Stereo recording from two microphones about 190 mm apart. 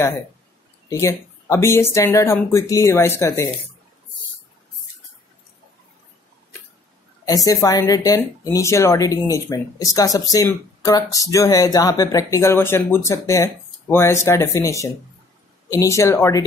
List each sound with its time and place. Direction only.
0.8 s speech: 15° left (ahead or behind)
7.2 s speech: 20° left (ahead or behind)